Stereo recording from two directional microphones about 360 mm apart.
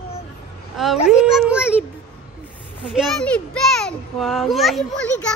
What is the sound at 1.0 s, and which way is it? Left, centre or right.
Speech, centre.